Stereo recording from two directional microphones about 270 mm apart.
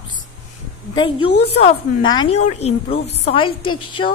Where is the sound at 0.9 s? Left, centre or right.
Centre.